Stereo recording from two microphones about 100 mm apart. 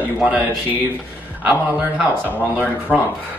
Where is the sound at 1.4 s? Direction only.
15° right (ahead or behind).